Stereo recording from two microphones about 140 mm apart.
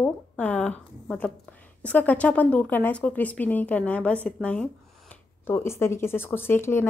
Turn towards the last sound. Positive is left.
turn(degrees=15)  # may be behind; listen again after turning